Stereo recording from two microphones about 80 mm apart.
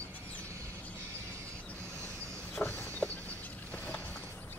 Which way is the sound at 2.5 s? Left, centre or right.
Left.